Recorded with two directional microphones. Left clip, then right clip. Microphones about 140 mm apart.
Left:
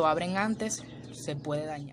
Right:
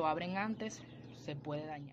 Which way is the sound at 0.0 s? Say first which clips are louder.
Left 9 dB; 25° left (ahead or behind).